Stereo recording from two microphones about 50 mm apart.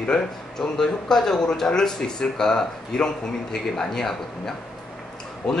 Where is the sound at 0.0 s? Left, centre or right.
Centre.